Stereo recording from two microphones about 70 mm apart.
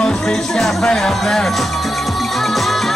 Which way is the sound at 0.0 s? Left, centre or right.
Centre.